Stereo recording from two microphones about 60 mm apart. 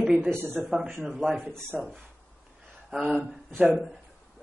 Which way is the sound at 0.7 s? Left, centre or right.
Centre.